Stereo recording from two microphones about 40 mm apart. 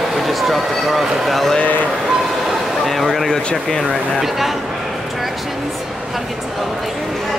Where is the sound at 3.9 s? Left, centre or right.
Centre.